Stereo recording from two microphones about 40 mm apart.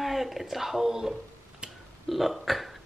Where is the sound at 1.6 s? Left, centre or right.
Right.